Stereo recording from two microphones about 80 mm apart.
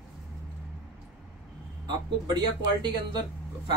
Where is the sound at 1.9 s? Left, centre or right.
Right.